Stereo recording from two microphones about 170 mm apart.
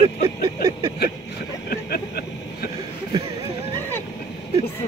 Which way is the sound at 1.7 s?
65° left (ahead or behind).